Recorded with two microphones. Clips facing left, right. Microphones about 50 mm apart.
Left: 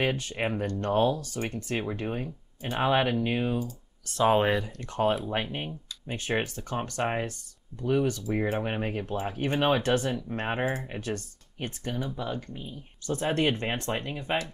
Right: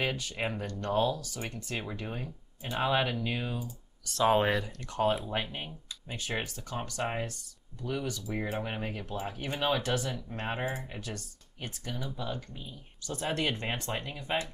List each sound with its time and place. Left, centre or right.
0.0 s speech: left
4.2 s speech: centre
4.7 s speech: left
10.9 s speech: left